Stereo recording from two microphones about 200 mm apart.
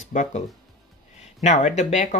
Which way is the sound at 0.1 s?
35° left (ahead or behind).